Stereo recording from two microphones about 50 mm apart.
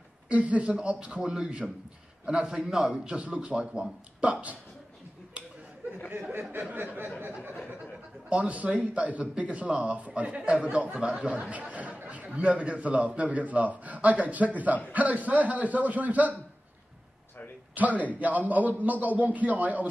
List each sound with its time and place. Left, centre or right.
0.3 s a man's voice: right
7.2 s a sound: right
8.3 s a man's voice: right
17.7 s a man's voice: right